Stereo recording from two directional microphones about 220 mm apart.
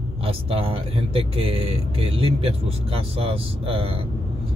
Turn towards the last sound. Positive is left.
turn(degrees=-25)  # may be behind; listen again after turning